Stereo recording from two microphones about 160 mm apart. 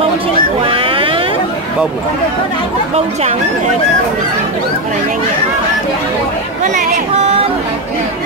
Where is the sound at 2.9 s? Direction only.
45° right (ahead or behind).